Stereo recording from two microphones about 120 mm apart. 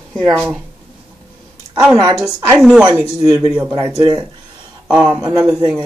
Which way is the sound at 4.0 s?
35° right (ahead or behind).